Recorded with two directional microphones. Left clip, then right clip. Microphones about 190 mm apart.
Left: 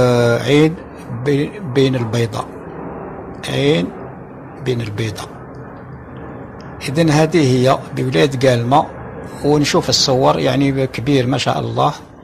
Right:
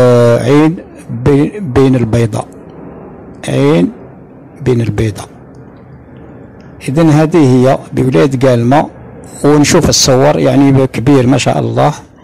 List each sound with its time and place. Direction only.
0.0 s a sound: 50° right (ahead or behind)
1.3 s a man's voice: 50° right (ahead or behind)
3.4 s a man's voice: 50° right (ahead or behind)
6.9 s a man's voice: 50° right (ahead or behind)